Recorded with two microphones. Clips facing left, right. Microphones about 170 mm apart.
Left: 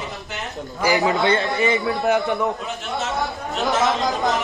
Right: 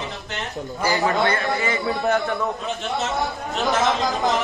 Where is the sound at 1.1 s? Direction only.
20° left (ahead or behind).